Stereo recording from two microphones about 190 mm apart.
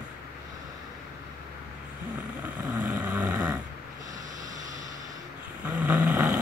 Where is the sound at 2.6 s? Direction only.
10° right (ahead or behind).